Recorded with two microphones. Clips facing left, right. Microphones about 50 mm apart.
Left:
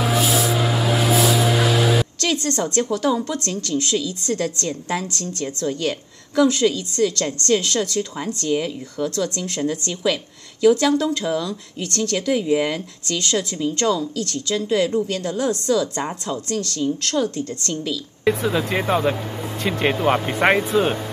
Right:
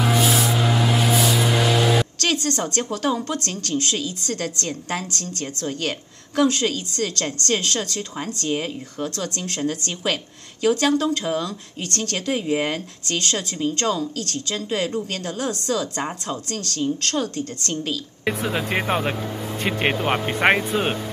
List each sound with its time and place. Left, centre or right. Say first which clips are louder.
0.0 s vehicle: even; centre
2.1 s music: even; right
2.5 s a woman's voice: left 4 dB; right
18.8 s speech: left 3 dB; right